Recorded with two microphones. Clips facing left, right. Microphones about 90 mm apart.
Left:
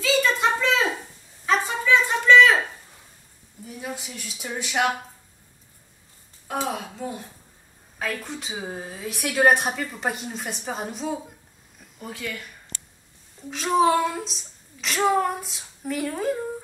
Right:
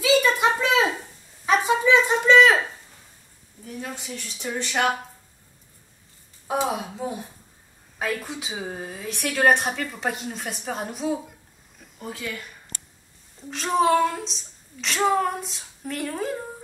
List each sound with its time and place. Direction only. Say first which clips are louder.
0.0 s a sound: right 2 dB; 15° right (ahead or behind)
3.6 s speech: even; 5° left (ahead or behind)
6.4 s a woman's voice: right 3 dB; 15° right (ahead or behind)
13.5 s a woman's voice: even; centre (ahead or behind)